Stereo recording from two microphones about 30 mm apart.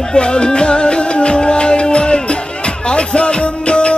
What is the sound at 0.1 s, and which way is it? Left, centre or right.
Music, left.